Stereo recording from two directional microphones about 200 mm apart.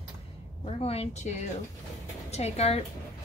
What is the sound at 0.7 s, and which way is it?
A woman's voice, 30° left (ahead or behind).